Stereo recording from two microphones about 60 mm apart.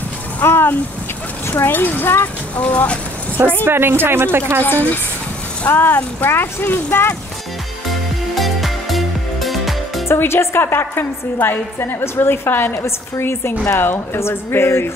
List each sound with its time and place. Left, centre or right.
0.4 s a woman's voice: left
2.5 s speech: left
3.6 s speech: right
4.6 s a woman's voice: left
8.4 s music: centre
10.0 s a woman's voice: left